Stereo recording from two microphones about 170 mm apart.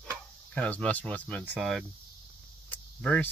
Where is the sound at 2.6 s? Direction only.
10° left (ahead or behind).